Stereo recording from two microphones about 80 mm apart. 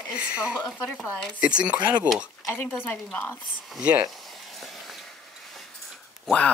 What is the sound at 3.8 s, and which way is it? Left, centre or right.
Speech, centre.